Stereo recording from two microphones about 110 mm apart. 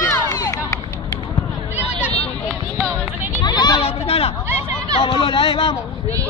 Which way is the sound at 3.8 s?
60° left (ahead or behind).